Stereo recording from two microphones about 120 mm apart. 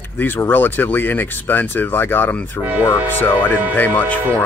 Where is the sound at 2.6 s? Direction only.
15° right (ahead or behind).